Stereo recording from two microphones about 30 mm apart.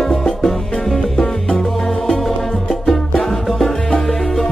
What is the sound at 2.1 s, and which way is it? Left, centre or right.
Music, centre.